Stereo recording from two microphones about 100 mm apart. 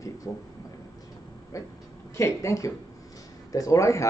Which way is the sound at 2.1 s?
30° left (ahead or behind).